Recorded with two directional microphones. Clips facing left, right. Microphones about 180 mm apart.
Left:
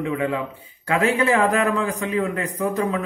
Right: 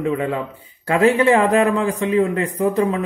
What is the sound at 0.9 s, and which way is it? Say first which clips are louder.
A man's voice: right 5 dB; 30° right (ahead or behind).